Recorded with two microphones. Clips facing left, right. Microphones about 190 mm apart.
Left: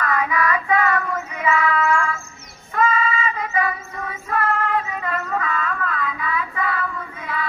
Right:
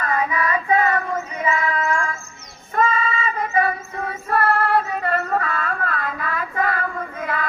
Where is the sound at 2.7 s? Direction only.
45° right (ahead or behind).